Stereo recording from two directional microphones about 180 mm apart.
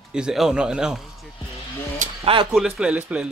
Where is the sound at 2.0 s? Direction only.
30° right (ahead or behind).